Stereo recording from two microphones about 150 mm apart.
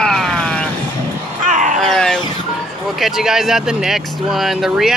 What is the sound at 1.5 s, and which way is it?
Wild animals, 60° right (ahead or behind).